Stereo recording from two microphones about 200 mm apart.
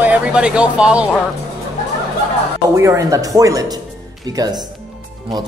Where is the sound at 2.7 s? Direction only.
15° right (ahead or behind).